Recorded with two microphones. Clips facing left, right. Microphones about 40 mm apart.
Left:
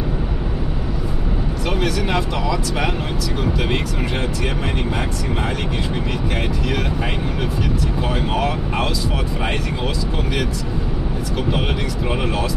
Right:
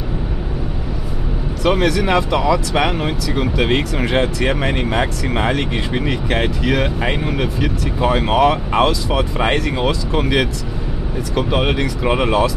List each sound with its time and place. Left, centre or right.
1.7 s speech: right
4.5 s speech: right
8.0 s speech: right
11.3 s speech: right